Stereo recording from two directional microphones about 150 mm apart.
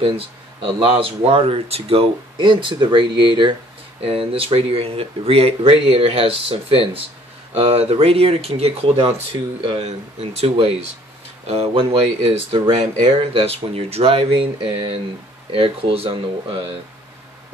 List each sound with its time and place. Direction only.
0.0 s speech: 35° right (ahead or behind)